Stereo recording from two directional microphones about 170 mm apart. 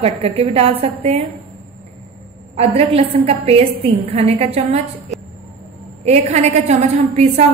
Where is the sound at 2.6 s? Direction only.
35° right (ahead or behind).